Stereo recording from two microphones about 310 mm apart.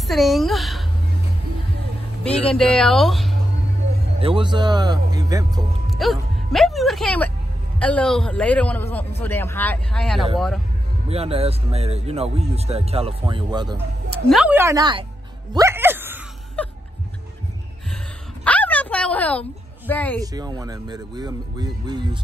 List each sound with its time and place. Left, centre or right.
0.1 s a man's voice: centre
2.2 s a man's voice: centre
4.2 s speech: centre
5.9 s a man's voice: centre
11.1 s speech: centre
15.5 s a sound: centre
16.6 s music: centre
18.4 s a sound: centre
19.9 s a man's voice: centre
20.2 s speech: centre